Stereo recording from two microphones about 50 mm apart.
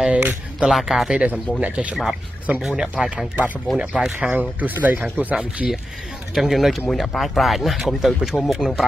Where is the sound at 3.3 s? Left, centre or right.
Right.